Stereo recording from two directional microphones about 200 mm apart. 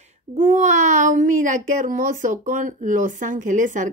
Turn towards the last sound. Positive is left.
turn(degrees=-40)  # may be behind; listen again after turning